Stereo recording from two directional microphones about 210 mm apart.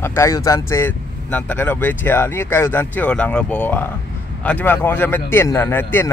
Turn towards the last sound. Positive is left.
turn(degrees=10)  # may be behind; listen again after turning